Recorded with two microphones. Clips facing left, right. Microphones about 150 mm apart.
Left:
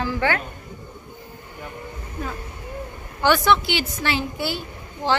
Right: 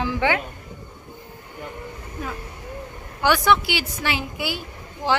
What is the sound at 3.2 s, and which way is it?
A woman's voice, 10° right (ahead or behind).